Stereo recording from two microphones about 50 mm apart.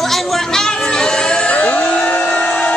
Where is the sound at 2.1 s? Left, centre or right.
Left.